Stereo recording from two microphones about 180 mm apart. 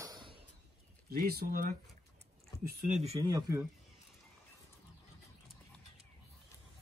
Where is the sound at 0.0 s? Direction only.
25° right (ahead or behind).